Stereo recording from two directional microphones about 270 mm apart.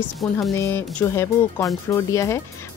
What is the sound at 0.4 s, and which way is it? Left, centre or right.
Speech, centre.